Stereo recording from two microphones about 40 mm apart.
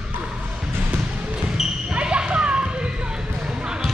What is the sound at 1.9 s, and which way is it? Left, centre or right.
Basketball bounce, right.